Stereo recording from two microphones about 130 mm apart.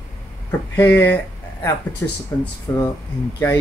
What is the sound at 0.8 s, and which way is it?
Speech, 15° left (ahead or behind).